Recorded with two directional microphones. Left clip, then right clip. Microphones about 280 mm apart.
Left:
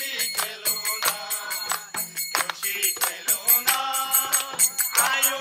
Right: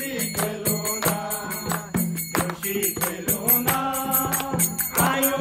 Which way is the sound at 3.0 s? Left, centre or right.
Left.